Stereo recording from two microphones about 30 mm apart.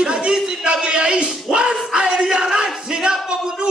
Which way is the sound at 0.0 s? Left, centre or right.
Right.